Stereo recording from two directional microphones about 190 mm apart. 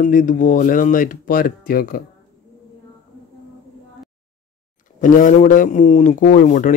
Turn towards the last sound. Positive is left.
turn(degrees=45)  # may be behind; listen again after turning